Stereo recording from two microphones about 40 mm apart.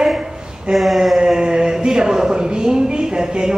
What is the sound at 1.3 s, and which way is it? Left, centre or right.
A woman's voice, centre.